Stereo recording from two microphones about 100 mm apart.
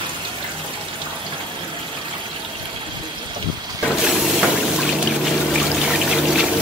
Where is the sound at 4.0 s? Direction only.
5° right (ahead or behind).